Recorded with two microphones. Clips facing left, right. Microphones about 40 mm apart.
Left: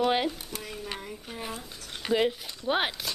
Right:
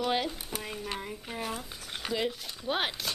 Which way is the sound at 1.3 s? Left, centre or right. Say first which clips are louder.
Right 2 dB; centre.